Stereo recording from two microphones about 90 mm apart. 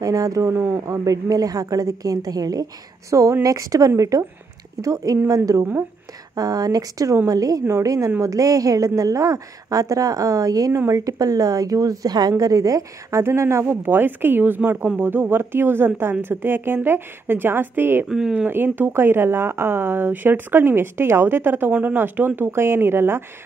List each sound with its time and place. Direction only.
0.0 s a woman's voice: 40° right (ahead or behind)
13.2 s speech: 30° right (ahead or behind)
18.0 s speech: 5° right (ahead or behind)
18.5 s speech: 25° right (ahead or behind)